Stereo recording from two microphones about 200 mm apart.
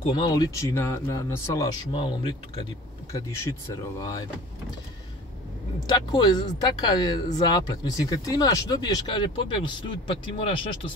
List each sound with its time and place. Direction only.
0.0 s speech: 25° left (ahead or behind)
5.9 s speech: 20° left (ahead or behind)